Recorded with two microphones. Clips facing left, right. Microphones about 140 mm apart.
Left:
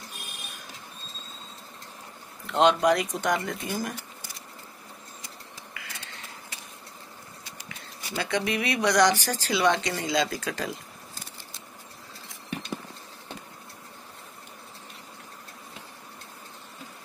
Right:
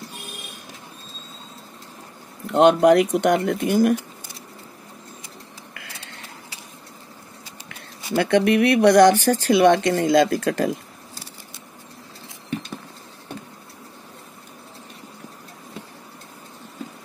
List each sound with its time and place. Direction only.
2.4 s speech: 50° right (ahead or behind)
5.8 s a sound: 60° right (ahead or behind)
8.1 s speech: 60° right (ahead or behind)